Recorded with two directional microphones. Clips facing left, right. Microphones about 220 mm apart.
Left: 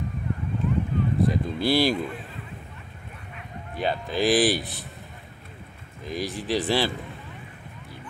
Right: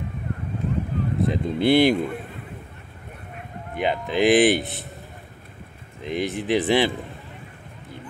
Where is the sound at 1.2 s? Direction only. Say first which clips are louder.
Right 5 dB; 20° right (ahead or behind).